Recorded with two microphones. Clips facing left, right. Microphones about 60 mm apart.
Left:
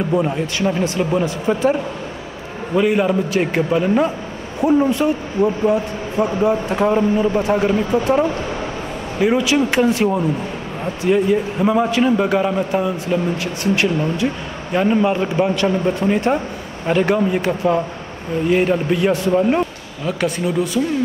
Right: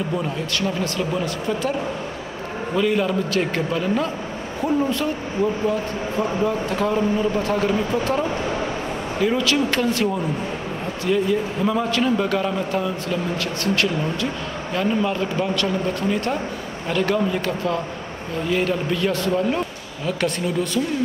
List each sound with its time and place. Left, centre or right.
0.1 s a man's voice: left
20.1 s a man's voice: centre